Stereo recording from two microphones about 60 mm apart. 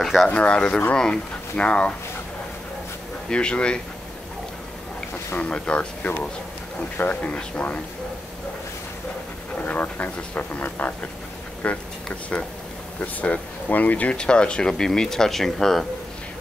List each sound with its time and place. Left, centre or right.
0.0 s a sound: centre
0.3 s speech: centre
3.3 s speech: centre
5.4 s speech: centre
9.7 s a sound: left
11.6 s speech: left
13.0 s speech: left; by 15.9 s centre